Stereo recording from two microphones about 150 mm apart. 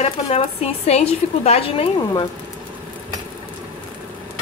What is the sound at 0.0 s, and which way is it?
Speech, 45° left (ahead or behind).